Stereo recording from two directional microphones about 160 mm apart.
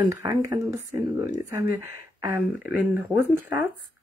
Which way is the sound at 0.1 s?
20° right (ahead or behind).